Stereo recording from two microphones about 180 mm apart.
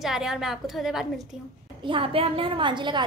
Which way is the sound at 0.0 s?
5° right (ahead or behind).